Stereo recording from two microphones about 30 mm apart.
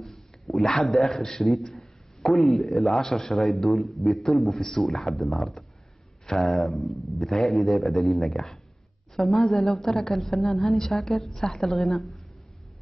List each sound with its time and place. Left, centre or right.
0.5 s a man's voice: centre
1.2 s a man's voice: centre